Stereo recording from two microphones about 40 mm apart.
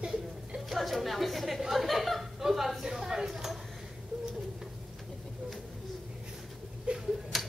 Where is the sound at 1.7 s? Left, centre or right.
Centre.